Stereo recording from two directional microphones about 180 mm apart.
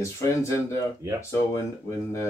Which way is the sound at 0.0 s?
15° left (ahead or behind).